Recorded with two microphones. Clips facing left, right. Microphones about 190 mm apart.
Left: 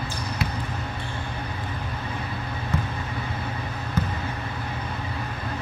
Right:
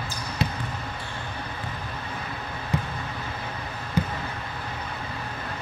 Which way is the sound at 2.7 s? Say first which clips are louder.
Even; 15° right (ahead or behind).